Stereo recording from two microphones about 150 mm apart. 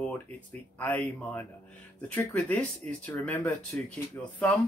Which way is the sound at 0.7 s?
10° left (ahead or behind).